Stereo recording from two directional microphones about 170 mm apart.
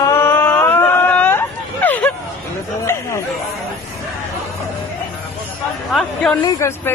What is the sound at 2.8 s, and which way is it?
Chatter, 15° left (ahead or behind).